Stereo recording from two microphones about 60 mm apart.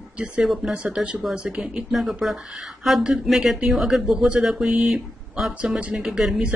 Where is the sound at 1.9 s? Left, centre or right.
Centre.